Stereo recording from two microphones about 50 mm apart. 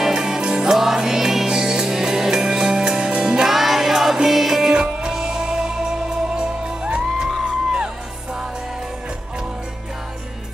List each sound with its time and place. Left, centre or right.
0.0 s music: centre